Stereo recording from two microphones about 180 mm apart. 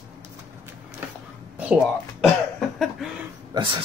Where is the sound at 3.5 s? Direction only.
25° right (ahead or behind).